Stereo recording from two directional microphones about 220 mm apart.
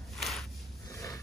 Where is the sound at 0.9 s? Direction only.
15° left (ahead or behind).